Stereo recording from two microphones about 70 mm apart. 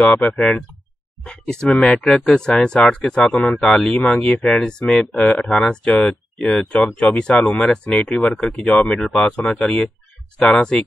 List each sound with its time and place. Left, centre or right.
0.0 s speech: centre
8.8 s speech: centre